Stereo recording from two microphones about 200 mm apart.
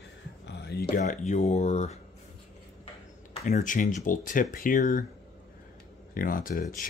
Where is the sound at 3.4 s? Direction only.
40° left (ahead or behind).